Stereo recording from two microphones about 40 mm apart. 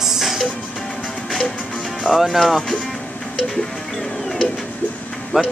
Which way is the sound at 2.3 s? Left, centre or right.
Centre.